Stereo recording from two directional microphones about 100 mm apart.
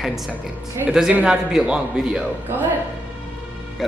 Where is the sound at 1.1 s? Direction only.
10° right (ahead or behind).